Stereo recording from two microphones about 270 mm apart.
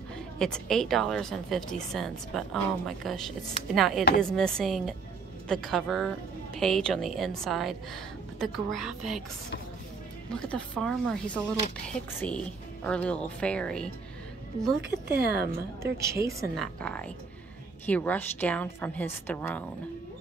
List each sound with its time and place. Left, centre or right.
0.4 s a woman's voice: centre
10.3 s a woman's voice: centre
15.0 s a woman's voice: right
15.8 s a woman's voice: centre
16.5 s a woman's voice: centre